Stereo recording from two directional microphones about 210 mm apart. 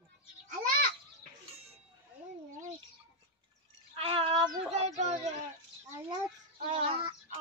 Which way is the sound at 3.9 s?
25° right (ahead or behind).